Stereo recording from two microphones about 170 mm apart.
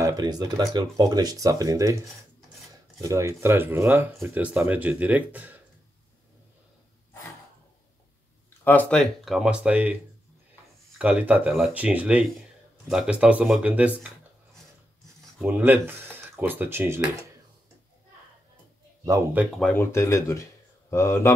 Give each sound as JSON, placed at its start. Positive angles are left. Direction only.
{"t": 0.0, "sound": "speech", "side_deg": -25}
{"t": 8.6, "sound": "speech", "side_deg": 10}
{"t": 11.0, "sound": "speech", "side_deg": -10}
{"t": 15.4, "sound": "speech", "side_deg": -10}
{"t": 19.0, "sound": "speech", "side_deg": -15}
{"t": 19.6, "sound": "speech", "side_deg": 10}